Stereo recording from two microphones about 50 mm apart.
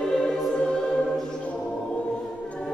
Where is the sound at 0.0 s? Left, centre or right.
Centre.